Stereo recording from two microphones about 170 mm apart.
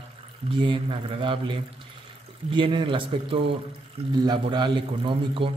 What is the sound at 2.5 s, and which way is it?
Speech, 30° right (ahead or behind).